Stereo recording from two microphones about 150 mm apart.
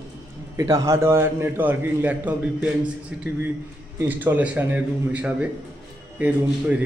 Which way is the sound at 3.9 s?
10° right (ahead or behind).